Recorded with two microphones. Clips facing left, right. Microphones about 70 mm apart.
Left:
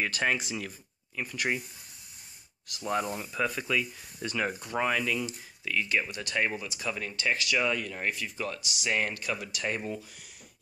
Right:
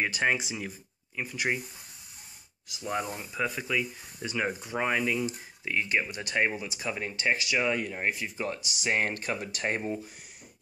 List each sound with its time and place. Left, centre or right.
0.0 s speech: centre
2.7 s speech: centre; by 10.0 s right